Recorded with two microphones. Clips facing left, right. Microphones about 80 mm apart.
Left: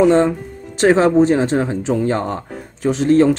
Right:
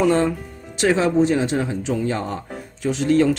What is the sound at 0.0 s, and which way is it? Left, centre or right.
Speech, left.